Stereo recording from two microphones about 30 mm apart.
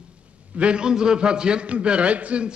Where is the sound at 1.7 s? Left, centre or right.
Right.